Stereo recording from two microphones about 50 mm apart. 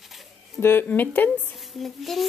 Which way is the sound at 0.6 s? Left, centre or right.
Left.